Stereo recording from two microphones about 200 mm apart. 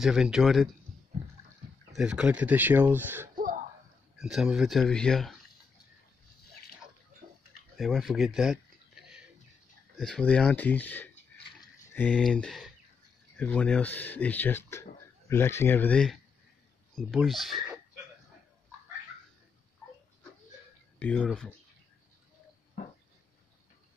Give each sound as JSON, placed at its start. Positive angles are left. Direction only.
{"t": 0.0, "sound": "speech", "side_deg": -5}
{"t": 2.0, "sound": "speech", "side_deg": -5}
{"t": 3.3, "sound": "throat clearing", "side_deg": -40}
{"t": 4.2, "sound": "speech", "side_deg": -5}
{"t": 7.7, "sound": "a sound", "side_deg": 0}
{"t": 9.9, "sound": "speech", "side_deg": 5}
{"t": 21.0, "sound": "speech", "side_deg": 5}